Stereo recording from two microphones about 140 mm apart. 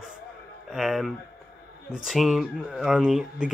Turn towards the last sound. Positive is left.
turn(degrees=-5)  # may be behind; listen again after turning